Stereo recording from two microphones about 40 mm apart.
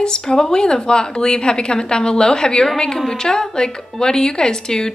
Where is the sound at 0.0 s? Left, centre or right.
Centre.